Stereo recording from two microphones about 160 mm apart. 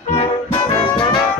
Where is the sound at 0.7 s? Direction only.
30° left (ahead or behind).